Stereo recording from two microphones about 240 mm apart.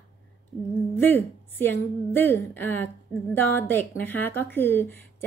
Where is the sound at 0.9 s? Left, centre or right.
Centre.